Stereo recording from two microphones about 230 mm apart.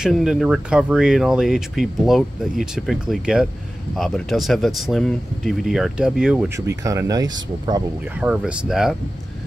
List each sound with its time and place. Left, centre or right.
0.0 s speech: centre
8.2 s speech: centre